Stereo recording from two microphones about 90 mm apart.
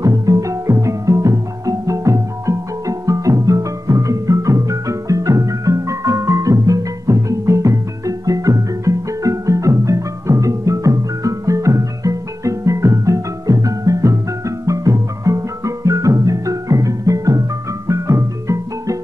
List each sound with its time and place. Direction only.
0.0 s music: 40° right (ahead or behind)